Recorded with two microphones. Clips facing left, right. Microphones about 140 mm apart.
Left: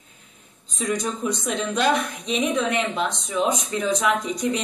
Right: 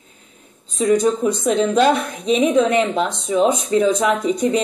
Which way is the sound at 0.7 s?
45° right (ahead or behind).